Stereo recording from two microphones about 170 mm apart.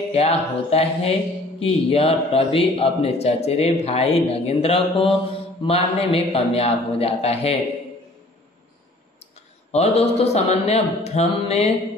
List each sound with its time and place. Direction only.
0.1 s mantra: 35° left (ahead or behind)
9.7 s mantra: 40° left (ahead or behind)